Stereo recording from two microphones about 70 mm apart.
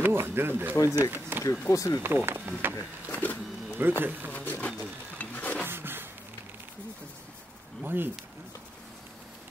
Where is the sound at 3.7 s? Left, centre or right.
Right.